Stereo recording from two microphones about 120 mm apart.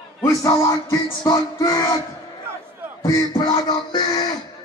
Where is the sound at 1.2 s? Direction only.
30° left (ahead or behind).